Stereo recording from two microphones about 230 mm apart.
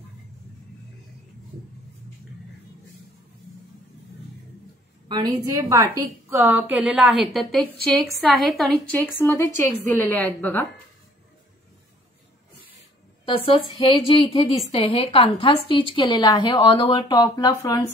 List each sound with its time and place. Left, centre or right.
5.0 s a woman's voice: centre
13.2 s a woman's voice: left